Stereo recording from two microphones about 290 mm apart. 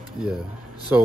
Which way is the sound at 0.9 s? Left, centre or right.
Centre.